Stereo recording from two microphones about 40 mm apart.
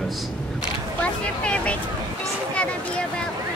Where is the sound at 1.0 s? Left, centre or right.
Left.